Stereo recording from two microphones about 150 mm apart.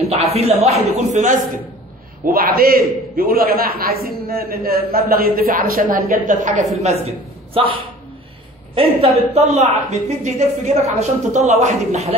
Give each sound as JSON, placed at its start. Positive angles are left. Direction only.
{"t": 0.1, "sound": "a woman's voice", "side_deg": -45}
{"t": 2.2, "sound": "a man's voice", "side_deg": -80}
{"t": 6.8, "sound": "a man's voice", "side_deg": -45}